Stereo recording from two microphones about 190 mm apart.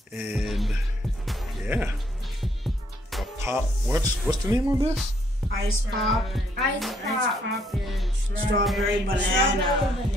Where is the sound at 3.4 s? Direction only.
15° right (ahead or behind).